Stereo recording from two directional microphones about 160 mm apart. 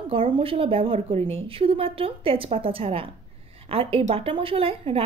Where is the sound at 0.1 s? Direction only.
35° right (ahead or behind).